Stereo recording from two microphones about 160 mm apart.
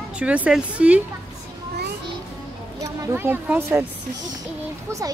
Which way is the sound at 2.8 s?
15° right (ahead or behind).